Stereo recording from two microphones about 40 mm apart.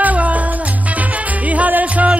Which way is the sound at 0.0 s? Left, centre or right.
Right.